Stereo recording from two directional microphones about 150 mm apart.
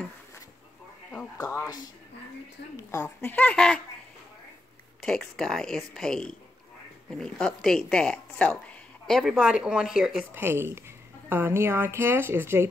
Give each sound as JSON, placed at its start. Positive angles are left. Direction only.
{"t": 1.4, "sound": "speech", "side_deg": 20}
{"t": 2.9, "sound": "speech", "side_deg": 15}
{"t": 5.0, "sound": "a woman's voice", "side_deg": 5}
{"t": 10.4, "sound": "speech", "side_deg": -15}